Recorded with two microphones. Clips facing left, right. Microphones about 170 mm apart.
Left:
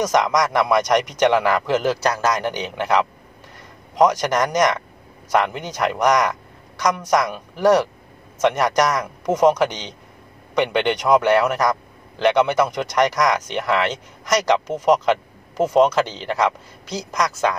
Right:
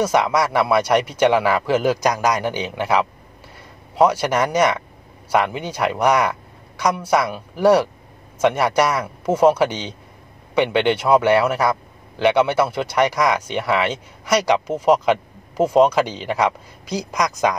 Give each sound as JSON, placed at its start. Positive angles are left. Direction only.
{"t": 0.0, "sound": "a man's voice", "side_deg": -10}